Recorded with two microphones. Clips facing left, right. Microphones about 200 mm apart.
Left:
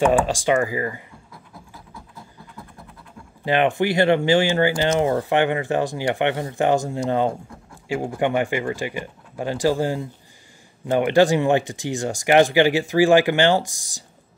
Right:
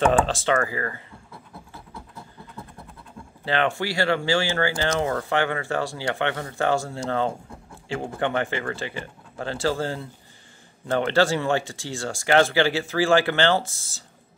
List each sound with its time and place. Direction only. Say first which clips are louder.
0.0 s speech: left 2 dB; 10° left (ahead or behind)
3.4 s speech: left 5 dB; 15° left (ahead or behind)